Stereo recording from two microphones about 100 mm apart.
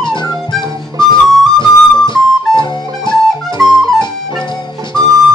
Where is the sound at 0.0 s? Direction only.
50° left (ahead or behind).